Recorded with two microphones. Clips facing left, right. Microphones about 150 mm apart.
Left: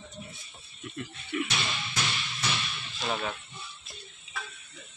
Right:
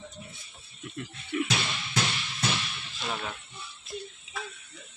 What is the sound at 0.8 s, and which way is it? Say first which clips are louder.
Speech: even; 25° right (ahead or behind).